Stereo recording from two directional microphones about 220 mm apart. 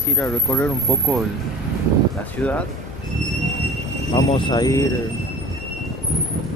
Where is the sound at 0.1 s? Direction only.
5° left (ahead or behind).